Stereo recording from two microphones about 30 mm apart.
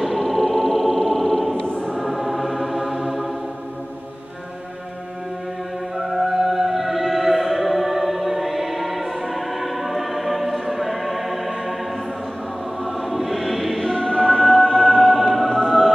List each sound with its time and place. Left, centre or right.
0.0 s a sound: centre
2.0 s music: centre
5.9 s music: centre
10.7 s choir: centre
12.8 s choir: centre
14.0 s music: left
15.0 s music: centre